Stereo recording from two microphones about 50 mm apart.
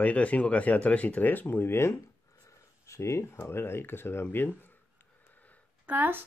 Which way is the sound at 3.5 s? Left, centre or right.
Left.